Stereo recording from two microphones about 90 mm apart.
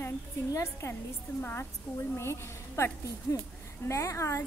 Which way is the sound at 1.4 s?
20° left (ahead or behind).